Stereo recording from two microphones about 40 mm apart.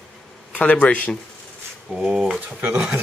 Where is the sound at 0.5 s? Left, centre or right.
Left.